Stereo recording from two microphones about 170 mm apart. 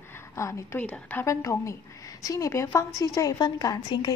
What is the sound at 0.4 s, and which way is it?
A woman's voice, 15° left (ahead or behind).